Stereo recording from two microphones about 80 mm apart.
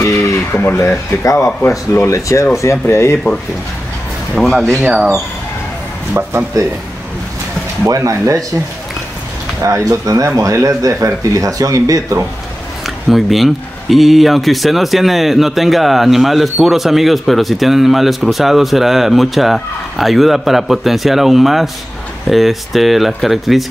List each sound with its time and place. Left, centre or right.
0.0 s a sound: left
0.5 s speech: left
0.7 s speech: left
4.4 s speech: centre
4.8 s speech: centre
6.2 s speech: right
6.5 s speech: right
7.9 s speech: right
9.6 s speech: right
12.8 s speech: centre